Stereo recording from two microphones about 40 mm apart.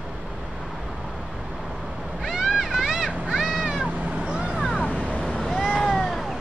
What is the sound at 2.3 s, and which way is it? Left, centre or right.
Vehicle, centre.